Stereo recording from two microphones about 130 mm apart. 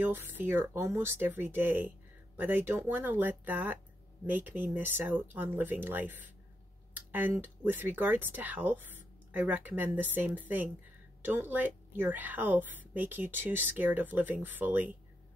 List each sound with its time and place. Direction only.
0.0 s a woman's voice: 15° right (ahead or behind)